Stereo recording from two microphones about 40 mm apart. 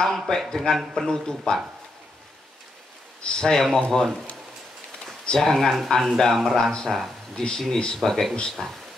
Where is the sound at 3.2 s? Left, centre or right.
Centre.